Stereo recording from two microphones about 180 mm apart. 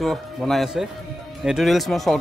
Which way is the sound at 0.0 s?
Centre (ahead or behind).